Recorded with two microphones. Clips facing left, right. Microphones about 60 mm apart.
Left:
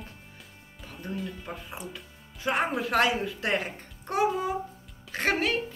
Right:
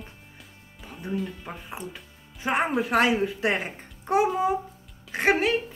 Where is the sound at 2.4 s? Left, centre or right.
Right.